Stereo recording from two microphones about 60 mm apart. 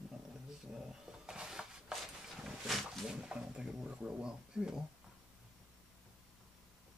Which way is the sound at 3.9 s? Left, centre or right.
Centre.